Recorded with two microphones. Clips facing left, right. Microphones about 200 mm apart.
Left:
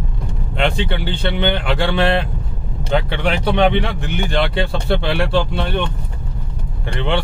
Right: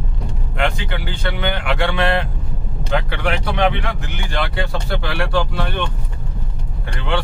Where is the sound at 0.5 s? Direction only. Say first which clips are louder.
Left 3 dB; 30° left (ahead or behind).